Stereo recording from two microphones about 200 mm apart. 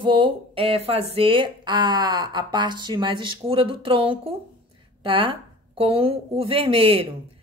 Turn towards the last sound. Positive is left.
turn(degrees=-25)  # may be behind; listen again after turning